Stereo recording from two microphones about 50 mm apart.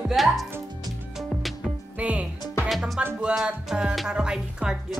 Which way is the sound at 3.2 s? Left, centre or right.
Centre.